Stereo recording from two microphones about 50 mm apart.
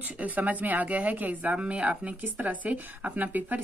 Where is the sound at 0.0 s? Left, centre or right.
Right.